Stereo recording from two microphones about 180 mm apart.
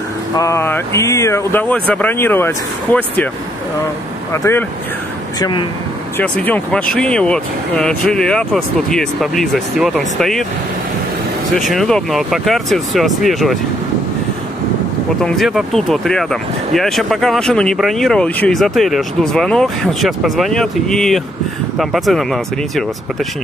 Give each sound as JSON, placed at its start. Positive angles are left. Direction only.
{"t": 0.4, "sound": "speech", "side_deg": 15}
{"t": 4.3, "sound": "speech", "side_deg": 15}
{"t": 5.4, "sound": "speech", "side_deg": 25}
{"t": 6.1, "sound": "speech", "side_deg": 10}
{"t": 11.5, "sound": "speech", "side_deg": 0}
{"t": 15.2, "sound": "speech", "side_deg": 0}